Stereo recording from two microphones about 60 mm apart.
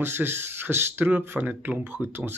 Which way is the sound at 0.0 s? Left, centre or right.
Right.